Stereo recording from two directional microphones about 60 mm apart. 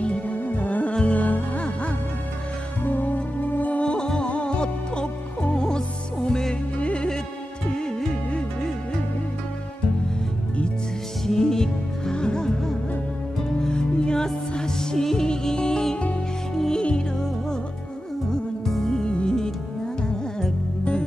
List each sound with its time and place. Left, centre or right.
0.0 s music: left
2.8 s music: left; by 8.5 s centre
11.2 s music: centre